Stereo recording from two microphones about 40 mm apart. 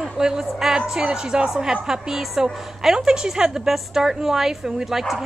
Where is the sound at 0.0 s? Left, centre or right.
Centre.